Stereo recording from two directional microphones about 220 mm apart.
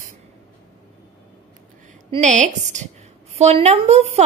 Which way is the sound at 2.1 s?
35° right (ahead or behind).